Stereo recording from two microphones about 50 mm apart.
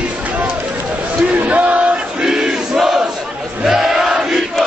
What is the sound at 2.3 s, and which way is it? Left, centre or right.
Crowd, centre.